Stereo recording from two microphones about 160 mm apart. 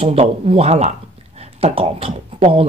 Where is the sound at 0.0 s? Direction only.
40° right (ahead or behind).